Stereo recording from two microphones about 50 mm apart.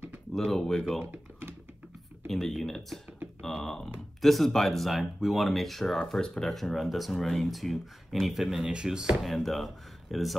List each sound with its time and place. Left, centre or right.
0.3 s speech: centre
1.0 s typing: right
2.2 s speech: centre
3.4 s a sound: centre
4.2 s speech: centre
6.6 s speech: centre
8.5 s speech: centre
9.2 s speech: centre